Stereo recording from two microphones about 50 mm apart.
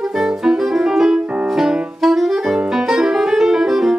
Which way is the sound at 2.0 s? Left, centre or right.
Centre.